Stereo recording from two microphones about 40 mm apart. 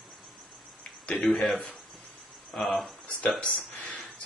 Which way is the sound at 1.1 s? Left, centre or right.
Centre.